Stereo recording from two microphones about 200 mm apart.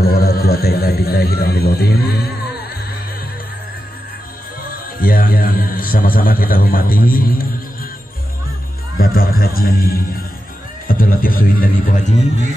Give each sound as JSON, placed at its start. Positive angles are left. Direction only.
{"t": 0.0, "sound": "a sound", "side_deg": 50}
{"t": 5.0, "sound": "a man's voice", "side_deg": 45}
{"t": 8.9, "sound": "a man's voice", "side_deg": 50}